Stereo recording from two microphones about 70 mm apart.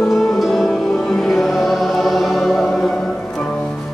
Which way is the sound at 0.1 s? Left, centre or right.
Centre.